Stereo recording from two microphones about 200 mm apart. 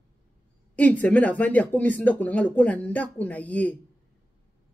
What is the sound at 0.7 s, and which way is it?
Speech, 5° left (ahead or behind).